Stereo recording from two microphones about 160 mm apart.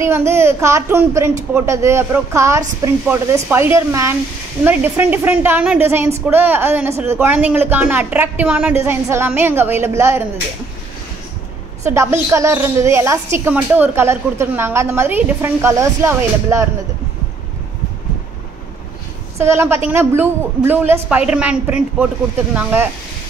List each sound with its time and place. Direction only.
0.0 s a woman's voice: 15° right (ahead or behind)
11.8 s a woman's voice: 15° right (ahead or behind)
19.3 s a woman's voice: 15° right (ahead or behind)